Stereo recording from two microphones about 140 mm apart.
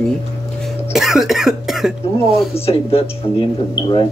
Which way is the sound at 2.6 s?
45° left (ahead or behind).